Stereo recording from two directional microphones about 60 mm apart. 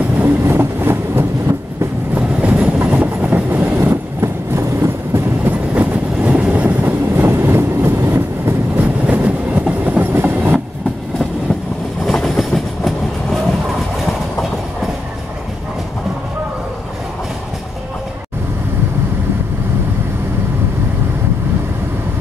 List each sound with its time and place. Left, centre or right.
0.2 s vehicle: right
2.1 s train: right
3.7 s train: right
5.4 s train: right
7.2 s vehicle: right
8.7 s train: right
12.1 s train: centre